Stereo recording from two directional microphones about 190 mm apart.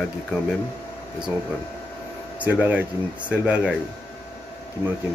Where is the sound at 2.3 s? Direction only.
10° right (ahead or behind).